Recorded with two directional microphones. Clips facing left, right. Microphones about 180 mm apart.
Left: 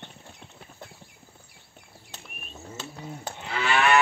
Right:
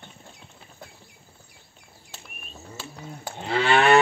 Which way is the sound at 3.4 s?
30° right (ahead or behind).